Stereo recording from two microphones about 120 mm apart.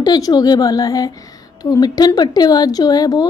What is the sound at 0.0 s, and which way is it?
Speech, 35° left (ahead or behind).